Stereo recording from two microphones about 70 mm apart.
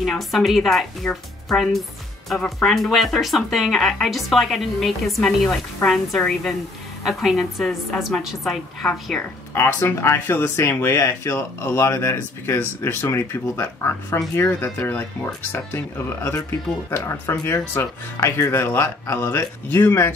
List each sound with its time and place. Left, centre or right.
0.0 s a woman's voice: centre
9.5 s speech: left